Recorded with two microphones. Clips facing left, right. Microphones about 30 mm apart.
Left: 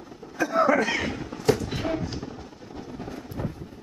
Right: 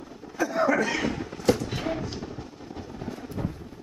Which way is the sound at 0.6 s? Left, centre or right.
Left.